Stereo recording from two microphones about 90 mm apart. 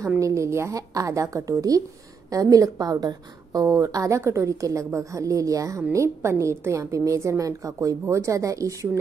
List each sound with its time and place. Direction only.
0.2 s a woman's voice: 35° right (ahead or behind)